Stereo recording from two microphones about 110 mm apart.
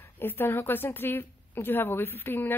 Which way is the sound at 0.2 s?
20° left (ahead or behind).